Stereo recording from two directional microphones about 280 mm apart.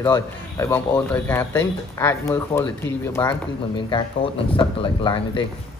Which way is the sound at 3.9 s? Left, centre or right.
Centre.